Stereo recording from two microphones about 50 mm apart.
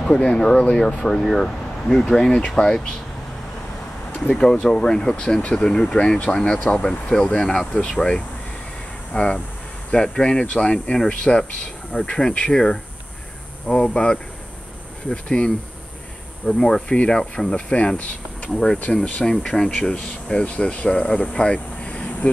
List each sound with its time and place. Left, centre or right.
0.0 s speech: left
1.2 s speech: centre
2.1 s speech: centre
4.2 s speech: centre
5.9 s speech: left
9.1 s speech: left